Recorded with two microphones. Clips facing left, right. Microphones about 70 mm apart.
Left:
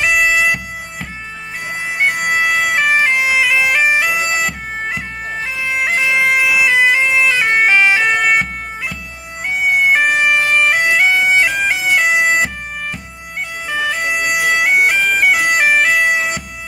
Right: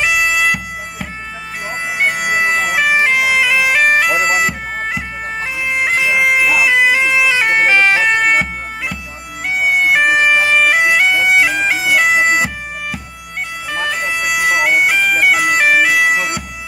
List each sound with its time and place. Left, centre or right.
0.0 s bagpipes: centre
4.1 s bagpipes: right
4.8 s bagpipes: centre
13.7 s bagpipes: centre